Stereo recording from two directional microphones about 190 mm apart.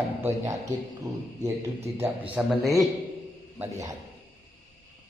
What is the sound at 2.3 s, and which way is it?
Speech, centre (ahead or behind).